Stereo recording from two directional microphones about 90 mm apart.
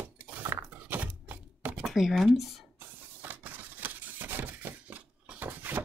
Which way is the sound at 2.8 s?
20° right (ahead or behind).